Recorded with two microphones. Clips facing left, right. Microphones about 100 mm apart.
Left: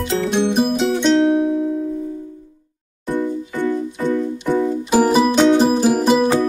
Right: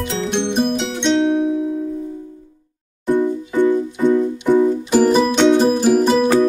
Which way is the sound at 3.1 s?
20° right (ahead or behind).